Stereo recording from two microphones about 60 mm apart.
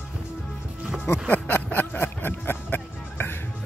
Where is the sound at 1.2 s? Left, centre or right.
Left.